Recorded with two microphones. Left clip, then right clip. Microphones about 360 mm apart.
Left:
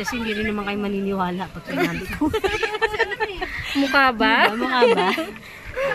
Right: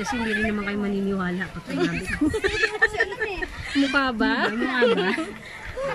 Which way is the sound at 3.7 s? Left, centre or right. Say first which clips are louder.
Left 5 dB; left.